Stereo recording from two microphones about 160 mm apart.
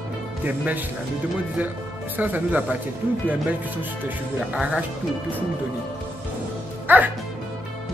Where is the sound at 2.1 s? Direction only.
10° right (ahead or behind).